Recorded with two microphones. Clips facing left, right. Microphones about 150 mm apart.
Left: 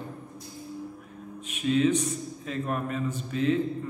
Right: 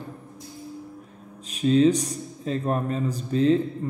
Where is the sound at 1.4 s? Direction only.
35° right (ahead or behind).